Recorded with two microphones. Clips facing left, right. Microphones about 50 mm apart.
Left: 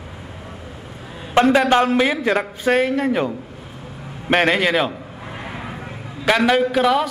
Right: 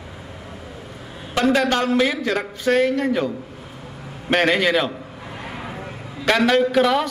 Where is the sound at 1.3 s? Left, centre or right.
Left.